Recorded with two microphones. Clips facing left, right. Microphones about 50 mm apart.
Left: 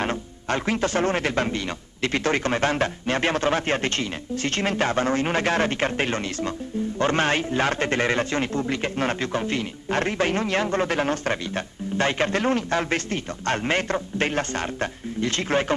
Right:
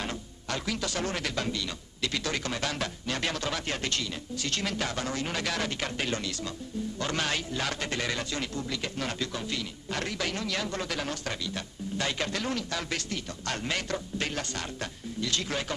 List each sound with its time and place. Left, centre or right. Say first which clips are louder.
0.0 s a man's voice: left 9 dB; left